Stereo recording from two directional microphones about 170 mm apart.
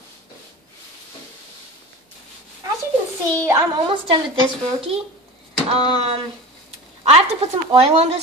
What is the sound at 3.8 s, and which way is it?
Speech, 30° right (ahead or behind).